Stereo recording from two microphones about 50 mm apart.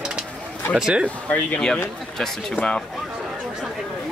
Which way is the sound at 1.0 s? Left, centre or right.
Left.